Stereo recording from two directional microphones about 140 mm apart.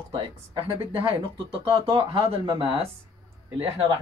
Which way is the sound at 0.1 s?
35° right (ahead or behind).